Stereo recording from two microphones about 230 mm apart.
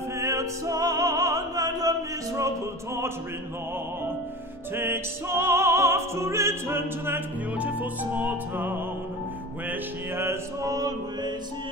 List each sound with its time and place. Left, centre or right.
0.2 s opera: centre
4.7 s music: centre